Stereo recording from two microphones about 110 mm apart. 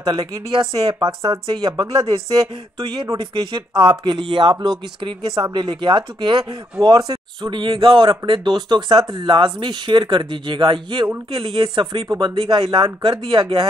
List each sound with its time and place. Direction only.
0.0 s speech: 35° right (ahead or behind)
2.9 s speech: 40° right (ahead or behind)